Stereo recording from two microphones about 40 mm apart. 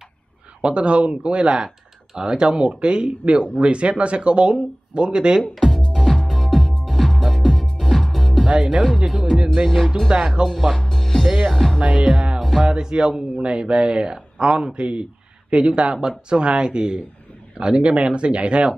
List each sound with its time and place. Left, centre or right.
0.6 s speech: right
5.5 s music: centre
8.9 s speech: centre
9.7 s music: centre
10.1 s speech: right
10.9 s music: centre
11.2 s speech: centre
11.5 s music: centre
11.8 s music: right
12.5 s speech: centre